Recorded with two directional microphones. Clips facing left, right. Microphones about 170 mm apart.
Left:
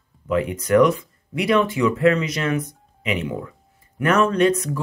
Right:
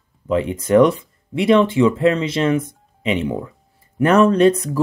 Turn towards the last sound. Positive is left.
turn(degrees=-30)  # may be behind; listen again after turning